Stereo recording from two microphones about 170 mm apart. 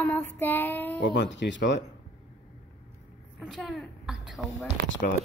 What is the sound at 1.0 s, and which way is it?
Speech, 90° left.